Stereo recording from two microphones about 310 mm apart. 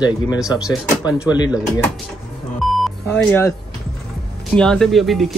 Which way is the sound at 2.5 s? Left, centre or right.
Centre.